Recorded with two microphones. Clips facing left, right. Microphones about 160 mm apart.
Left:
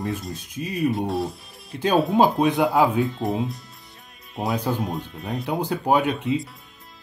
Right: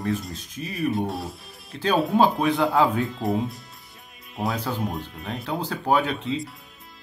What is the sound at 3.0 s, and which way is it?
Speech, centre (ahead or behind).